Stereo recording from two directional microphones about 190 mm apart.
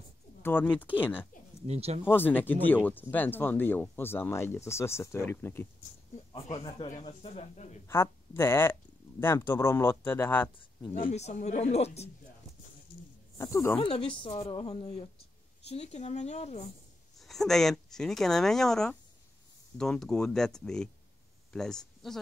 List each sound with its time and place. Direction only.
0.4 s speech: 10° left (ahead or behind)
1.7 s speech: 35° right (ahead or behind)
2.0 s speech: 10° left (ahead or behind)
6.1 s speech: 30° left (ahead or behind)
7.9 s speech: 15° left (ahead or behind)
11.1 s speech: 35° left (ahead or behind)
13.4 s speech: 15° left (ahead or behind)
13.7 s a woman's voice: 30° left (ahead or behind)
17.2 s speech: centre (ahead or behind)